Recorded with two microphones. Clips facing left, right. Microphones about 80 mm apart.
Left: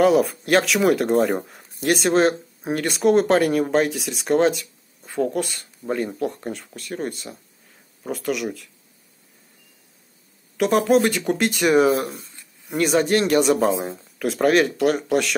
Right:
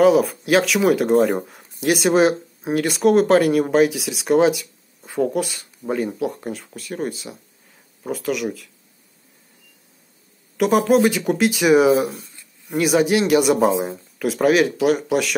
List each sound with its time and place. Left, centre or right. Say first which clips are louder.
0.0 s speech: right 2 dB; centre
10.6 s speech: right 2 dB; centre